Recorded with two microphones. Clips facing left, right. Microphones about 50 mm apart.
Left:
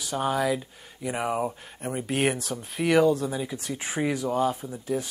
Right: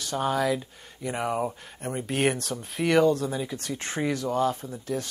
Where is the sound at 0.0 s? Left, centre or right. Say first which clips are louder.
Even; centre.